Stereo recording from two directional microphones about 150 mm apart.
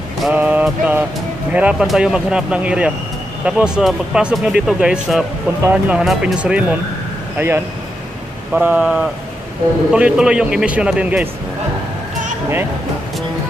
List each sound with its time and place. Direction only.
0.2 s mantra: 10° right (ahead or behind)
1.5 s speech: 10° right (ahead or behind)